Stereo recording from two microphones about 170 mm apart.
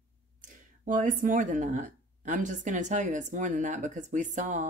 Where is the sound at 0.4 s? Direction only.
50° right (ahead or behind).